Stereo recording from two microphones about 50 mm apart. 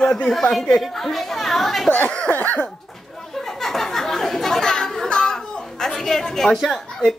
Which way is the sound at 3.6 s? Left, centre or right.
Centre.